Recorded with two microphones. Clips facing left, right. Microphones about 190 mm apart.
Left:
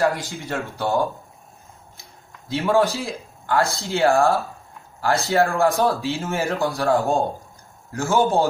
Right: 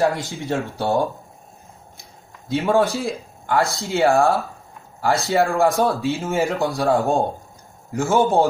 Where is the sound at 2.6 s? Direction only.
15° right (ahead or behind).